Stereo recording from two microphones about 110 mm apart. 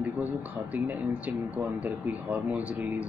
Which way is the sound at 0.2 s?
15° right (ahead or behind).